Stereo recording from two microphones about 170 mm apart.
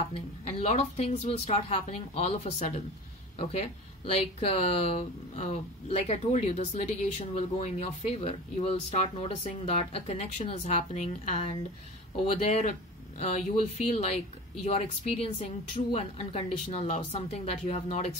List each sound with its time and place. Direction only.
0.1 s speech: 35° left (ahead or behind)